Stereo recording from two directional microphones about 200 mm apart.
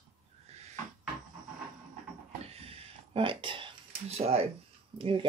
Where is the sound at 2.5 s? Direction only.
30° right (ahead or behind).